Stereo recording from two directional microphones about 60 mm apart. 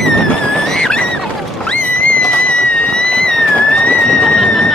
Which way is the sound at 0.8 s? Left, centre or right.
Centre.